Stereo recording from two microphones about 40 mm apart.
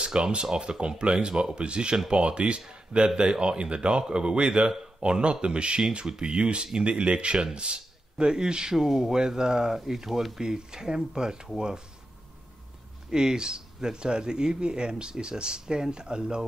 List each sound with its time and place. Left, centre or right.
0.0 s speech: right
2.7 s a sound: right
3.2 s speech: right; by 10.4 s centre
10.4 s speech: centre
13.1 s speech: centre